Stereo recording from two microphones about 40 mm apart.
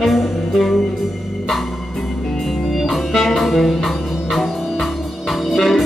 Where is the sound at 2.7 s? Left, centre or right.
Centre.